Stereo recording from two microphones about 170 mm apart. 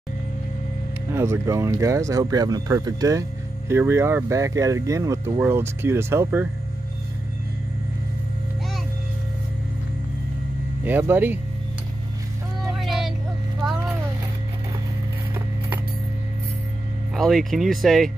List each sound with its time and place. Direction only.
1.1 s speech: 15° right (ahead or behind)
10.8 s speech: 10° right (ahead or behind)
12.7 s a sound: centre (ahead or behind)
17.1 s speech: centre (ahead or behind)